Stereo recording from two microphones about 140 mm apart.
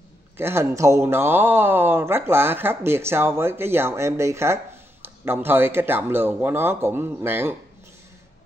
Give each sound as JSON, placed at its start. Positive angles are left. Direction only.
{"t": 0.4, "sound": "speech", "side_deg": -20}